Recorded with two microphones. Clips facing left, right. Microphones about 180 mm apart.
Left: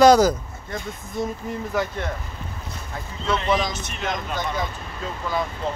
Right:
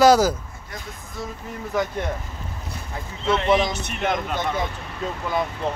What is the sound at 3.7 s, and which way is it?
Speech, 60° right (ahead or behind).